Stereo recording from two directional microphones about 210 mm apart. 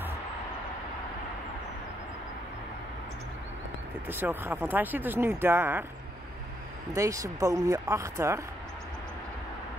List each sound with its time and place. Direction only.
4.1 s speech: 10° right (ahead or behind)
7.0 s speech: 15° right (ahead or behind)